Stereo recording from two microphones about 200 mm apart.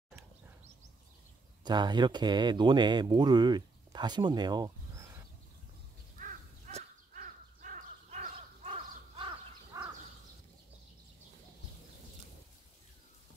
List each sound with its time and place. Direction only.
1.6 s speech: 20° right (ahead or behind)
6.1 s crow: 40° right (ahead or behind)
9.7 s bird: 15° right (ahead or behind)